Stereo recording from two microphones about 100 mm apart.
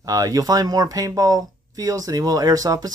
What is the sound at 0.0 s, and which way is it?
Speech, 35° right (ahead or behind).